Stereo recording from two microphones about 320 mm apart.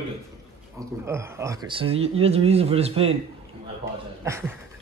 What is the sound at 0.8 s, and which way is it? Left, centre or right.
Speech, centre.